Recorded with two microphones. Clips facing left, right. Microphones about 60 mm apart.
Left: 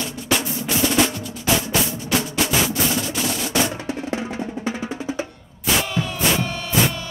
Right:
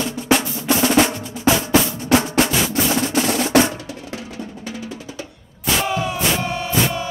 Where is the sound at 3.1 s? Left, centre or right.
Right.